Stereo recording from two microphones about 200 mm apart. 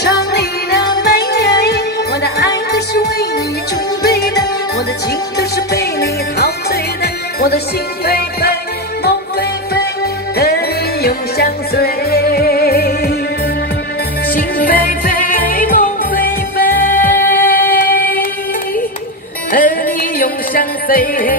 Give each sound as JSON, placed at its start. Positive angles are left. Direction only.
{"t": 0.0, "sound": "music", "side_deg": 55}
{"t": 10.3, "sound": "music", "side_deg": 50}
{"t": 14.3, "sound": "music", "side_deg": 45}
{"t": 17.8, "sound": "singing", "side_deg": 50}
{"t": 19.5, "sound": "music", "side_deg": 45}